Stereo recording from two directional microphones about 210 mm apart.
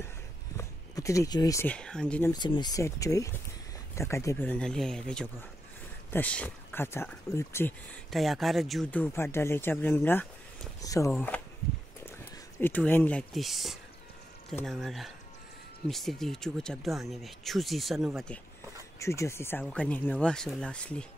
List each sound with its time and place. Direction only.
0.6 s speech: 15° left (ahead or behind)
2.3 s speech: 20° left (ahead or behind)
12.5 s speech: 10° left (ahead or behind)
18.9 s speech: 15° left (ahead or behind)
19.6 s speech: centre (ahead or behind)